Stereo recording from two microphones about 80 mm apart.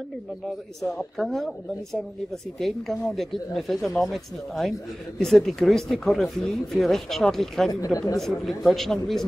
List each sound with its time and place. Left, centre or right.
0.8 s speech: centre
7.8 s speech: left
8.2 s speech: centre